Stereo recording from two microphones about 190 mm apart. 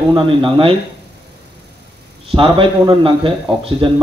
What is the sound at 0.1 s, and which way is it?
Speech, 25° right (ahead or behind).